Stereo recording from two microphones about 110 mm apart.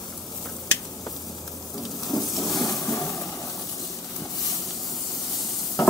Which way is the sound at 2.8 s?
25° left (ahead or behind).